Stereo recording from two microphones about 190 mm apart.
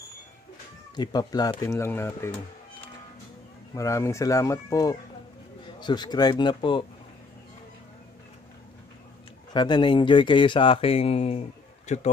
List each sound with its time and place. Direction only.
0.9 s speech: 20° left (ahead or behind)
3.7 s speech: 15° left (ahead or behind)
9.5 s speech: 25° left (ahead or behind)